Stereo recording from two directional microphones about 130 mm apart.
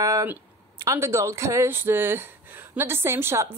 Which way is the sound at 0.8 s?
20° right (ahead or behind).